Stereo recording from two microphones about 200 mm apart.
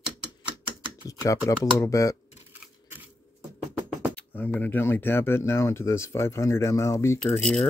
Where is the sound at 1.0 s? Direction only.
15° left (ahead or behind).